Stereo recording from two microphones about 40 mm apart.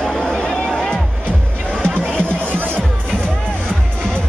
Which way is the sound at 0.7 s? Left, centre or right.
Centre.